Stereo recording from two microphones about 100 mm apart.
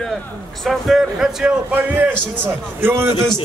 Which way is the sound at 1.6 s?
20° right (ahead or behind).